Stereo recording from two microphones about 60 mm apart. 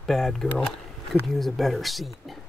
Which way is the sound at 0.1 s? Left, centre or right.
Centre.